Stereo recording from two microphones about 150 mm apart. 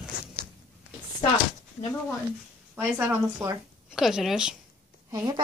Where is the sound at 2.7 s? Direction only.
15° right (ahead or behind).